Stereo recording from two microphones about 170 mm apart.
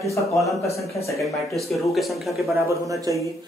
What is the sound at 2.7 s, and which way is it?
Speech, 20° right (ahead or behind).